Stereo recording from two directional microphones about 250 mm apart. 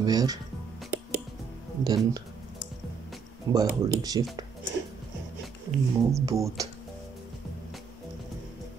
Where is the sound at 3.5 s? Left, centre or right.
Centre.